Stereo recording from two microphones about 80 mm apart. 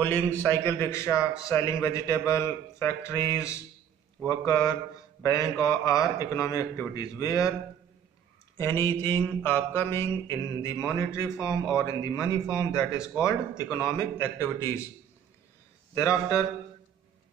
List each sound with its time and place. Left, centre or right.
0.0 s a man's voice: left
8.5 s a man's voice: left
15.9 s a man's voice: left